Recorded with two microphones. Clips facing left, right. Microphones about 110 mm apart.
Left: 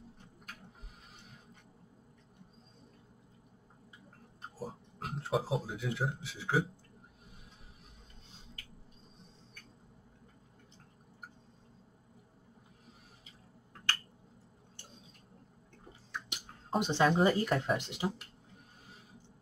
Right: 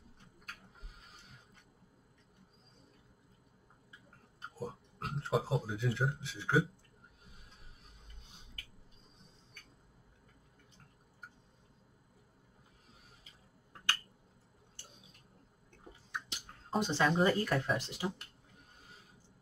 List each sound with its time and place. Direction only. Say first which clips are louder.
4.4 s speech: right 1 dB; centre (ahead or behind)
16.8 s speech: left 2 dB; 20° left (ahead or behind)